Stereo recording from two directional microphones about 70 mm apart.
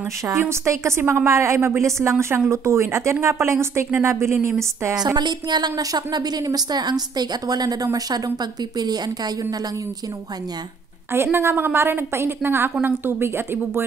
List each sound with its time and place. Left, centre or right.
0.3 s speech: right
4.9 s speech: right
8.7 s speech: right
11.3 s a woman's voice: right